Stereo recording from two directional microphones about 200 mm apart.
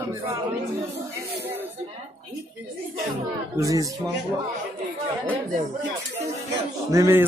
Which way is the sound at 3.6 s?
15° right (ahead or behind).